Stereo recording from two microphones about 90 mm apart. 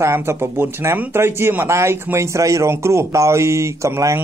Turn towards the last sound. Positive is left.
turn(degrees=-35)  # may be behind; listen again after turning